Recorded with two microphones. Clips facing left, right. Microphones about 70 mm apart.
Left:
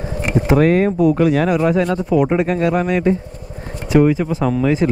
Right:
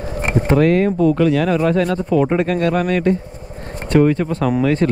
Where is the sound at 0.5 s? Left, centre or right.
Centre.